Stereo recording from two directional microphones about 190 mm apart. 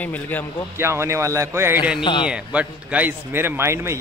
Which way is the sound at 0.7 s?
15° right (ahead or behind).